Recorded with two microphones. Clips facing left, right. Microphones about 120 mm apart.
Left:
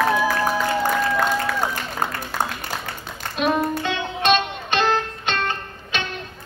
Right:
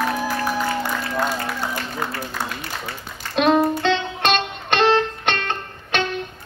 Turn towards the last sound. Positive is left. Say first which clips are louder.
# right 4 dB
turn(degrees=-65)  # may be behind; listen again after turning